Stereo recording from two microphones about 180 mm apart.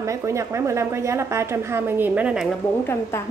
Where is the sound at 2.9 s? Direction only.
15° left (ahead or behind).